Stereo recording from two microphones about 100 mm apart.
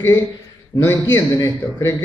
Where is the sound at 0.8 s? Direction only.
20° left (ahead or behind).